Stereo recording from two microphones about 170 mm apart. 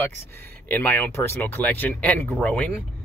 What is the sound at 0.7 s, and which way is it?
Speech, 10° left (ahead or behind).